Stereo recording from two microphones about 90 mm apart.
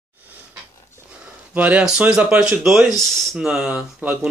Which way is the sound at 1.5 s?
15° right (ahead or behind).